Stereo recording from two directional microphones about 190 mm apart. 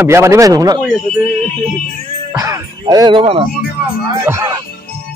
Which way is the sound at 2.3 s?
20° right (ahead or behind).